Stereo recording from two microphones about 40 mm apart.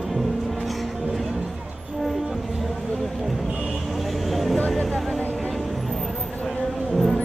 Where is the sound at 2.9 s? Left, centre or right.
Centre.